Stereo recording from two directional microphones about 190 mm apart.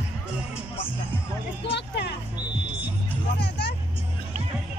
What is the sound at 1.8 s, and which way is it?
Music, 65° left (ahead or behind).